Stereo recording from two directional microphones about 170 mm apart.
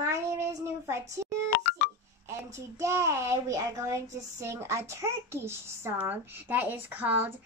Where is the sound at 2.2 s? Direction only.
15° right (ahead or behind).